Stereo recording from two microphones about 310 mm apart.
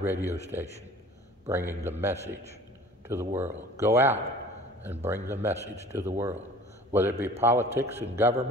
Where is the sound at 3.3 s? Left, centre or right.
Centre.